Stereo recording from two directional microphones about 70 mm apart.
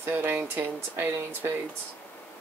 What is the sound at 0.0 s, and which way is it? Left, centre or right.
Speech, right.